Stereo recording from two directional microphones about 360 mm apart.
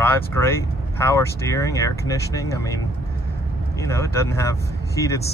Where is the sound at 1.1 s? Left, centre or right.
Centre.